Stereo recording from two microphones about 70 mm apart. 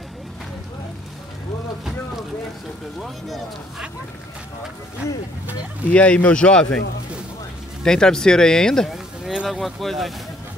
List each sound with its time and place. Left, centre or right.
3.0 s speech: centre
5.9 s speech: centre
7.8 s speech: centre
8.9 s speech: centre